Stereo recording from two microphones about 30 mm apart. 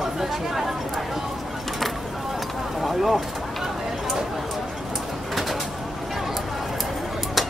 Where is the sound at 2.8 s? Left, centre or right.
Centre.